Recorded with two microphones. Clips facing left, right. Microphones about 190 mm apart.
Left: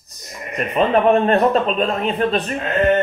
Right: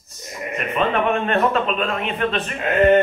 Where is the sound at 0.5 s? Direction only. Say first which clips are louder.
Left 4 dB; 35° left (ahead or behind).